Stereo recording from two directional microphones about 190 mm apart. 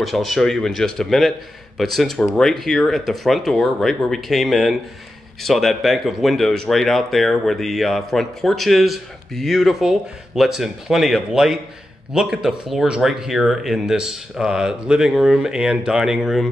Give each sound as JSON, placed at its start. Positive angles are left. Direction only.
{"t": 0.0, "sound": "speech", "side_deg": 0}